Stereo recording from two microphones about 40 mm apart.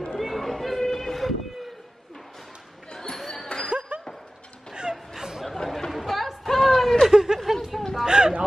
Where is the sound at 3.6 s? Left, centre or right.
Right.